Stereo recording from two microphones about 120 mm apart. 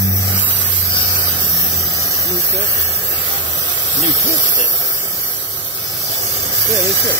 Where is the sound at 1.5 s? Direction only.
25° left (ahead or behind).